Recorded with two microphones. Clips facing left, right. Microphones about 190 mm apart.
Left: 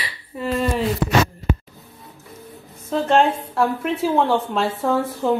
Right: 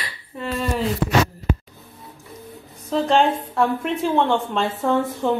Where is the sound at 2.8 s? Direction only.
Centre (ahead or behind).